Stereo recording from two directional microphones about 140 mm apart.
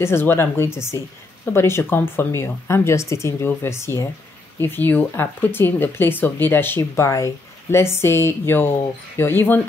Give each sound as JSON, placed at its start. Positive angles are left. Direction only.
{"t": 0.0, "sound": "speech", "side_deg": 15}